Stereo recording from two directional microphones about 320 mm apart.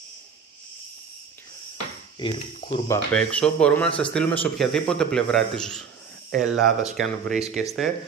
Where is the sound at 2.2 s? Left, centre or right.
Centre.